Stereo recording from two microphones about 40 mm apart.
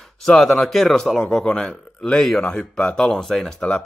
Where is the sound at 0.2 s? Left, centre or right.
Centre.